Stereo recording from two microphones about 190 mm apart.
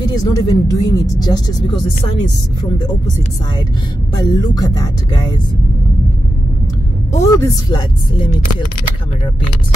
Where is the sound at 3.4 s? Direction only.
20° left (ahead or behind).